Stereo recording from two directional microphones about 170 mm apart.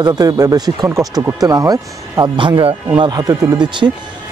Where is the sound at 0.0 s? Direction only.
20° right (ahead or behind).